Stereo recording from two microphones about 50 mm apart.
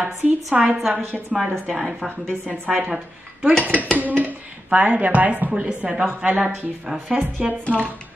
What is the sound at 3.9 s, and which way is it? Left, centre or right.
Speech, right.